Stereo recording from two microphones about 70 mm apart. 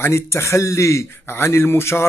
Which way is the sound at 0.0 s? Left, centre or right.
Left.